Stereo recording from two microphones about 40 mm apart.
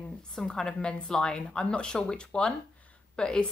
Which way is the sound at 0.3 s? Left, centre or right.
Centre.